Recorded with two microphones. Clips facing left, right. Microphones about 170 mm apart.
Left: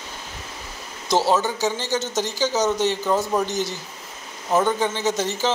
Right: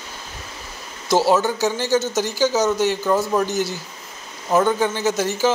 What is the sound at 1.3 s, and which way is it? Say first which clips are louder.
Speech: right 3 dB; 15° left (ahead or behind).